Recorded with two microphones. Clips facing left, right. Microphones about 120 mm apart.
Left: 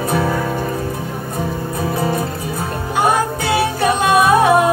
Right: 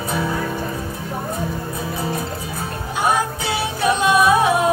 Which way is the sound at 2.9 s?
60° left (ahead or behind).